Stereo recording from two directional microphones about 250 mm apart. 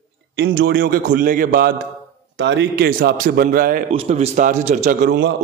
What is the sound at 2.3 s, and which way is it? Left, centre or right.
A man's voice, right.